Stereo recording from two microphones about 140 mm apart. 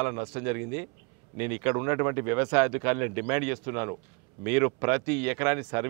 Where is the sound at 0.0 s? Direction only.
20° right (ahead or behind).